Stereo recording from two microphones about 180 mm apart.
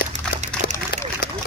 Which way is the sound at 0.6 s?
55° left (ahead or behind).